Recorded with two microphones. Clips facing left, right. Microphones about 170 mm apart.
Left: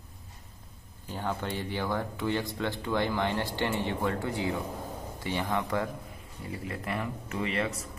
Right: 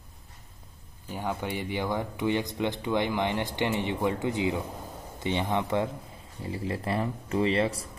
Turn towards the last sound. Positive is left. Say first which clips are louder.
# right 6 dB
turn(degrees=-30)  # may be behind; listen again after turning